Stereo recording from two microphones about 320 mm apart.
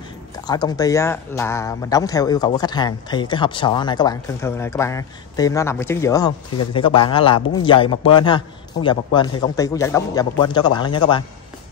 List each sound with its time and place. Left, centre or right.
0.4 s speech: centre